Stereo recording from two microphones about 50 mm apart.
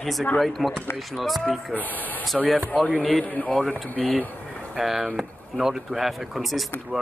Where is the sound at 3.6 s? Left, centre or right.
Centre.